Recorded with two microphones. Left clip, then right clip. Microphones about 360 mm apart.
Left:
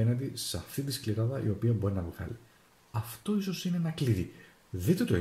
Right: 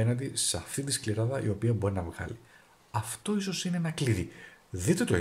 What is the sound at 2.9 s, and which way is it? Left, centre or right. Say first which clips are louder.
Speech: right 3 dB; right.